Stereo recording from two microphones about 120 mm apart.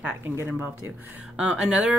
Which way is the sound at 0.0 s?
20° right (ahead or behind).